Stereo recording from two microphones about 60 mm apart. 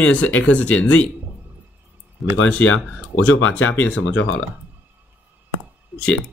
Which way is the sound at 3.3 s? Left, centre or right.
Left.